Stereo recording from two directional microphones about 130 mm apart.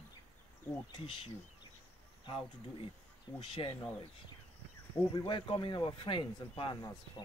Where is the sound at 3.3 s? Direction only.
40° left (ahead or behind).